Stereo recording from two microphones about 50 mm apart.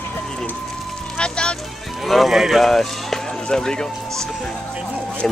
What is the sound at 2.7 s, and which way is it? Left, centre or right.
Speech, centre.